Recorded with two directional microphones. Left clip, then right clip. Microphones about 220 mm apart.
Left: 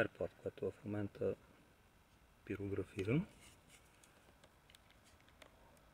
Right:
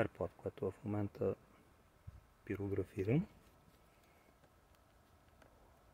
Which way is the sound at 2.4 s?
10° right (ahead or behind).